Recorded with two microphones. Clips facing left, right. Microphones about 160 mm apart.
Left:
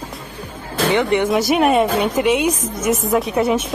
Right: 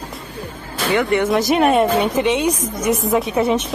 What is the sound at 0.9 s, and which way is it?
Speech, 20° left (ahead or behind).